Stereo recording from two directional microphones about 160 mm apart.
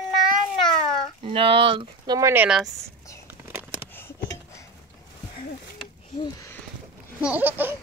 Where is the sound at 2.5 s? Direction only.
5° right (ahead or behind).